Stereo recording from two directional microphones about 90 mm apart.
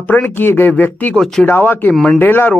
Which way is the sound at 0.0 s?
20° left (ahead or behind).